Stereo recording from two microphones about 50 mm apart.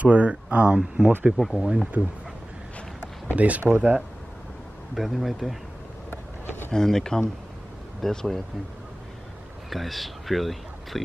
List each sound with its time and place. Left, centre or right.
0.0 s speech: right
1.3 s speech: centre
2.0 s speech: right
3.3 s speech: right
4.9 s speech: centre
6.0 s vehicle: left
6.7 s speech: centre
9.7 s speech: centre